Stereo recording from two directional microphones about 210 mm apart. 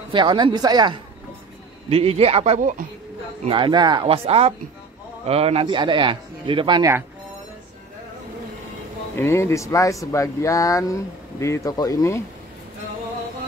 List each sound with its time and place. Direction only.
0.1 s a man's voice: 20° right (ahead or behind)
9.1 s speech: 10° left (ahead or behind)